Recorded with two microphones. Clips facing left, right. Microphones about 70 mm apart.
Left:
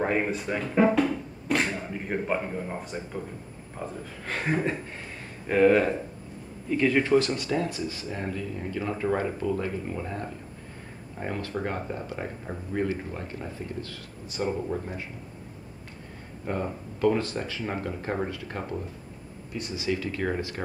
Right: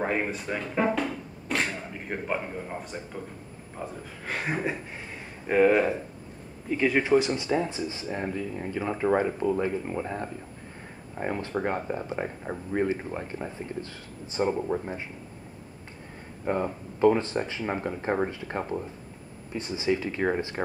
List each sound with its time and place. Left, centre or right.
0.0 s music: centre
3.7 s speech: centre
16.5 s speech: centre